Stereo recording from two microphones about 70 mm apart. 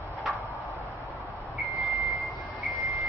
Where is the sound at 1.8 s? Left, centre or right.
Centre.